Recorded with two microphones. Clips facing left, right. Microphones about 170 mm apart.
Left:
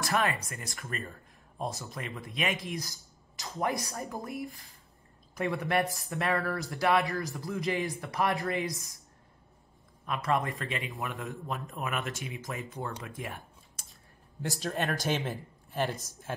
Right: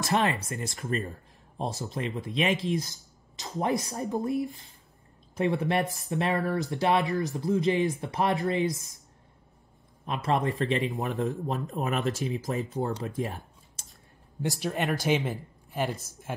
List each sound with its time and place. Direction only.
0.0 s speech: 25° right (ahead or behind)
10.0 s speech: 30° right (ahead or behind)
14.6 s speech: 15° right (ahead or behind)